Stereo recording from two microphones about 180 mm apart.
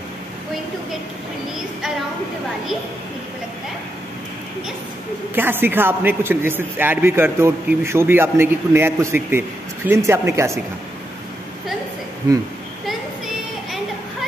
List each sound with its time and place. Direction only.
5.3 s a man's voice: 10° right (ahead or behind)
12.2 s speech: 20° right (ahead or behind)